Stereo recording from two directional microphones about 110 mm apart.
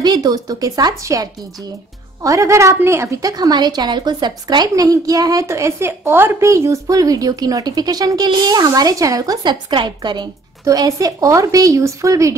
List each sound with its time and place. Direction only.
0.0 s a woman's voice: 40° right (ahead or behind)
10.6 s a woman's voice: 30° right (ahead or behind)